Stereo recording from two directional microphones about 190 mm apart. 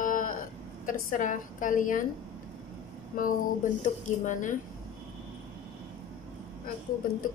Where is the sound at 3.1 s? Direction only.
50° left (ahead or behind).